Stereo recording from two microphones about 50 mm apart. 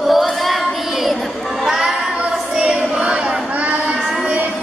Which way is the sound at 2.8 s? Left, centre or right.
Centre.